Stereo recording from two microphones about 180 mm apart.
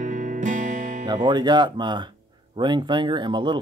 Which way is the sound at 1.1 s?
25° right (ahead or behind).